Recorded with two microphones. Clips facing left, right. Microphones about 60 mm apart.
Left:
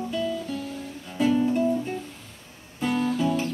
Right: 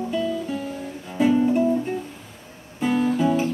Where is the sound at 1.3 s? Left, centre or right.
Centre.